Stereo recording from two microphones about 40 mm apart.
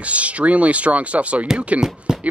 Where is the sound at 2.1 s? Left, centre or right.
Centre.